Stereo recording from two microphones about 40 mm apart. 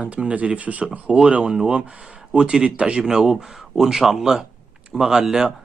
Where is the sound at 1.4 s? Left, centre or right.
Centre.